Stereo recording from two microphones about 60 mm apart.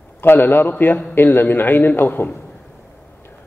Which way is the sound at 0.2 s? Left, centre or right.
Left.